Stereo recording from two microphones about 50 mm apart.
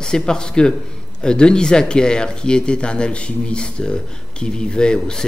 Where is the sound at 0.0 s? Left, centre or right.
Centre.